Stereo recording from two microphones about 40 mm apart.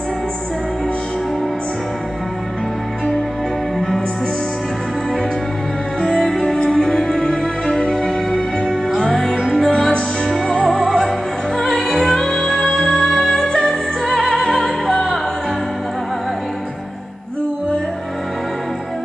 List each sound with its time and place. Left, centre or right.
5.9 s music: centre
10.5 s music: centre